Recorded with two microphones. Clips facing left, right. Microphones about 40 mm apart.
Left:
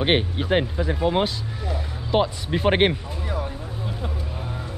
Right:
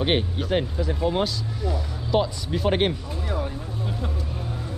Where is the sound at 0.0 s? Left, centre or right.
Left.